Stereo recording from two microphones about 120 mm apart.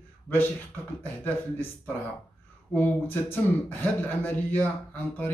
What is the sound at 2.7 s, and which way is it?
A man's voice, 15° left (ahead or behind).